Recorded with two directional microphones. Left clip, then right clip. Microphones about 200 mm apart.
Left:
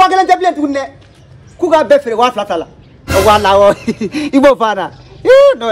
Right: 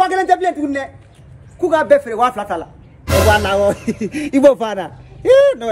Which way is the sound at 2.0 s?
50° left (ahead or behind).